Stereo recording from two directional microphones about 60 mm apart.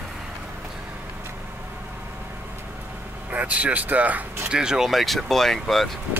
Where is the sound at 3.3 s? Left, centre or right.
Right.